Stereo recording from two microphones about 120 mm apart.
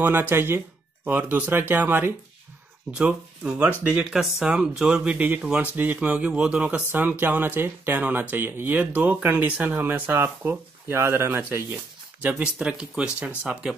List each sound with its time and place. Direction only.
0.0 s speech: 15° right (ahead or behind)